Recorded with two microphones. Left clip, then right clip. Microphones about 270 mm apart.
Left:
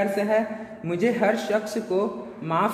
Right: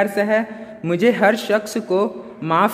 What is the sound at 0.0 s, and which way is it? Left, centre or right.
A man's voice, right.